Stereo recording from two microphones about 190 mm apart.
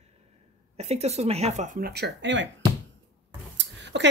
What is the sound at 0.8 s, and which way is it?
Speech, 35° right (ahead or behind).